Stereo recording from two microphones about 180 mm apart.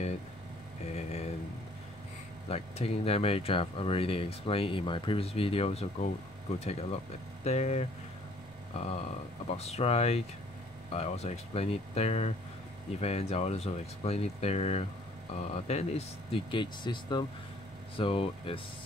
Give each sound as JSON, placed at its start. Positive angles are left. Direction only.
{"t": 0.9, "sound": "speech", "side_deg": 35}
{"t": 2.5, "sound": "speech", "side_deg": 35}
{"t": 9.5, "sound": "speech", "side_deg": 35}